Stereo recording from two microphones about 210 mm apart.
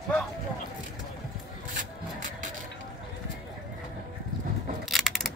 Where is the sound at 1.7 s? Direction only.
40° right (ahead or behind).